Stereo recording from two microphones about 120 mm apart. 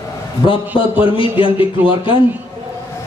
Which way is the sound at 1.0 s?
45° left (ahead or behind).